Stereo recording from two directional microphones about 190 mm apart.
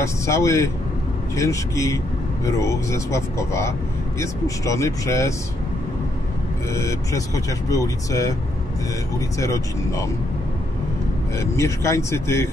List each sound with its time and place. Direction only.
0.0 s speech: 15° left (ahead or behind)
6.7 s speech: 15° left (ahead or behind)
9.4 s speech: 15° left (ahead or behind)
11.3 s speech: 15° left (ahead or behind)